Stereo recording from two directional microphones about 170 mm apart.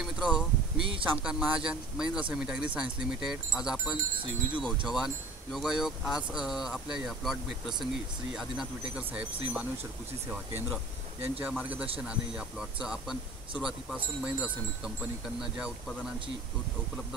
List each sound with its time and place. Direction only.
0.0 s a sound: 5° right (ahead or behind)
1.1 s speech: 5° right (ahead or behind)
4.2 s speech: 30° right (ahead or behind)
4.6 s speech: centre (ahead or behind)